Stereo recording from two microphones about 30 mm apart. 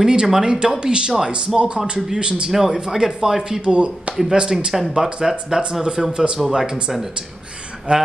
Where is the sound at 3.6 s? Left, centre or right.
Right.